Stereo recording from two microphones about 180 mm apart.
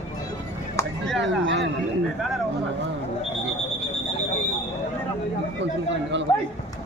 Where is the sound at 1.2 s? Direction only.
90° right.